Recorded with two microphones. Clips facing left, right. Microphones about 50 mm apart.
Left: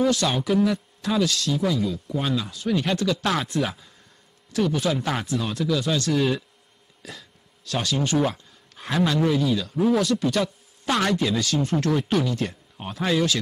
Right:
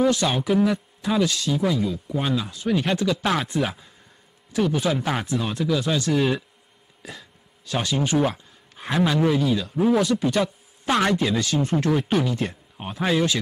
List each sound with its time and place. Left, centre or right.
0.0 s a man's voice: centre